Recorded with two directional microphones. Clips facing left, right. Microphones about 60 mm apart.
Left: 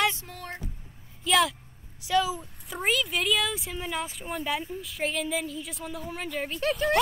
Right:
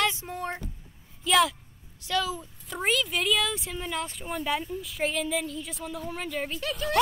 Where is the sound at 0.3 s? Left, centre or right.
Right.